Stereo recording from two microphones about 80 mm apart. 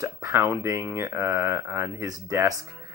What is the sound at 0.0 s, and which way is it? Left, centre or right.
Speech, right.